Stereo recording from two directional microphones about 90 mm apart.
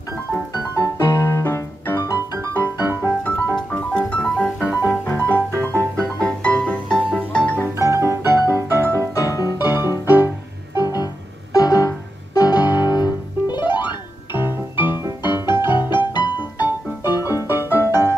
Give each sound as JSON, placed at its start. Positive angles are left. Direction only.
{"t": 0.5, "sound": "music", "side_deg": 40}
{"t": 7.6, "sound": "music", "side_deg": -30}
{"t": 9.1, "sound": "music", "side_deg": 40}
{"t": 10.0, "sound": "music", "side_deg": -20}
{"t": 10.8, "sound": "music", "side_deg": 50}
{"t": 12.6, "sound": "piano", "side_deg": -25}
{"t": 12.9, "sound": "piano", "side_deg": 50}
{"t": 14.3, "sound": "music", "side_deg": -25}
{"t": 15.2, "sound": "music", "side_deg": 55}
{"t": 15.5, "sound": "music", "side_deg": -25}
{"t": 17.0, "sound": "music", "side_deg": 40}